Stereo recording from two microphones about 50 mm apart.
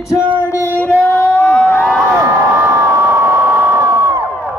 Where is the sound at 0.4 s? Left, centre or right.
Left.